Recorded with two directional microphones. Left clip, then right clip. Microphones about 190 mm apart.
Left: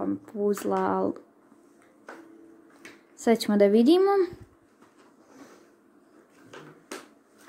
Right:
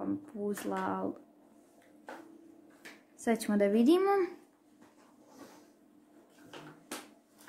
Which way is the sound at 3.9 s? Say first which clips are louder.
Left 6 dB; centre (ahead or behind).